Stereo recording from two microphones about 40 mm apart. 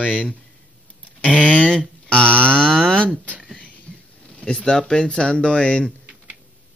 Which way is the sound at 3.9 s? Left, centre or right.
Left.